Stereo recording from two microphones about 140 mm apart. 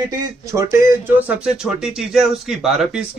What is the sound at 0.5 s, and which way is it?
Speech, 20° right (ahead or behind).